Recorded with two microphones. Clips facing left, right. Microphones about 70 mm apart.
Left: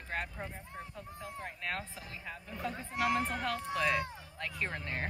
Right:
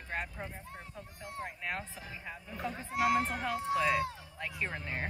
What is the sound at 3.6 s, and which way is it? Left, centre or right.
Vehicle, centre.